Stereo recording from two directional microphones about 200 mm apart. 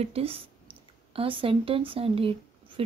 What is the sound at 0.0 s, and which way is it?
Speech, 30° right (ahead or behind).